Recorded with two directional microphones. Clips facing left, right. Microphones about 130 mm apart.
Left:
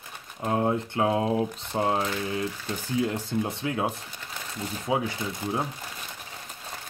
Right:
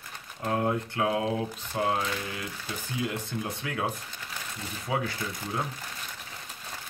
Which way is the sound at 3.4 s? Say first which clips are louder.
Left 4 dB; 25° left (ahead or behind).